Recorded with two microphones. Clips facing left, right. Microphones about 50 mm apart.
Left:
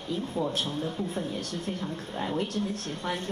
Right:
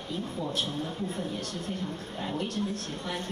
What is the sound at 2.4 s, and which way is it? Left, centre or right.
Speech, right.